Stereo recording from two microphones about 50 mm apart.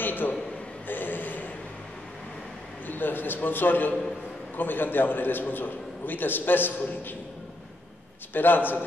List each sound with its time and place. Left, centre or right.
0.0 s a sound: left
2.9 s a man's voice: left
8.3 s a man's voice: left